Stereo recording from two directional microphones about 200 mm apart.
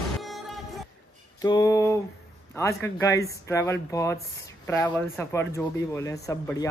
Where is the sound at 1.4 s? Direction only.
20° left (ahead or behind).